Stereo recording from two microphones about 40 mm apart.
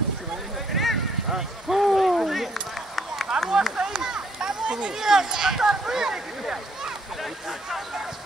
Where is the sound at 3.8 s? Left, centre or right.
Centre.